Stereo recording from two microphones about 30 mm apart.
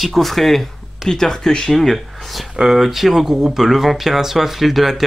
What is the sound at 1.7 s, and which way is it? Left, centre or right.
Speech, centre.